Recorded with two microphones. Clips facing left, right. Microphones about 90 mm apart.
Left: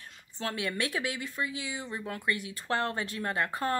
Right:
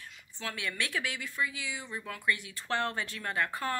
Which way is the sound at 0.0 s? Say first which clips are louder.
Left 4 dB; 40° left (ahead or behind).